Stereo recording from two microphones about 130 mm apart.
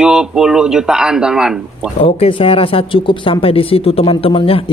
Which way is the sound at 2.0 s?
45° left (ahead or behind).